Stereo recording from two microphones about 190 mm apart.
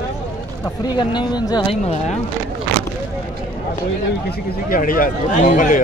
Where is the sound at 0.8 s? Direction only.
25° left (ahead or behind).